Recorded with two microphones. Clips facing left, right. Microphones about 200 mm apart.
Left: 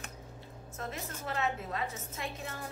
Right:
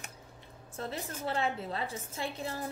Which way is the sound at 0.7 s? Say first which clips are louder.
Right 3 dB; 30° right (ahead or behind).